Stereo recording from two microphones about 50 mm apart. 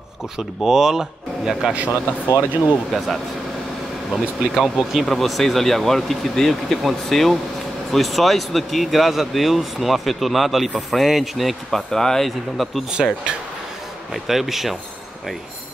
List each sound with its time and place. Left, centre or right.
0.6 s speech: centre
1.9 s speech: left
4.1 s speech: centre
14.1 s speech: centre